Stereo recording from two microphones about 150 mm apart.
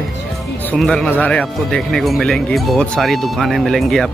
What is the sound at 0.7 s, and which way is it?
Speech, 5° left (ahead or behind).